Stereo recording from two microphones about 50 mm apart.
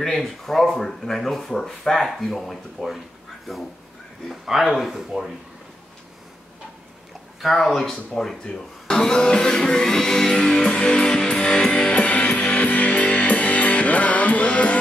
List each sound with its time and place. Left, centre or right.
0.0 s speech: centre
4.3 s speech: centre
7.4 s speech: centre
11.9 s music: left